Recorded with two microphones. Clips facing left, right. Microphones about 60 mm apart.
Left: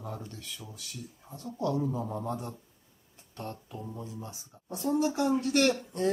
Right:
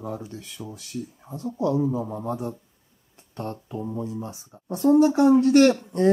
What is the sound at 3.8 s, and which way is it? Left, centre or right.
Speech, right.